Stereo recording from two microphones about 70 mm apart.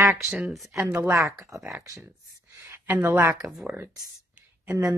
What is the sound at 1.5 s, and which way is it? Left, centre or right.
Speech, right.